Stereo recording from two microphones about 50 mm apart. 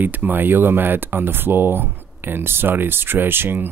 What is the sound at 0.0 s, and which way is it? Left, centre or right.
Speech, right.